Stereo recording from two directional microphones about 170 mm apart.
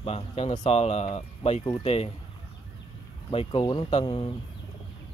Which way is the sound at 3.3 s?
30° left (ahead or behind).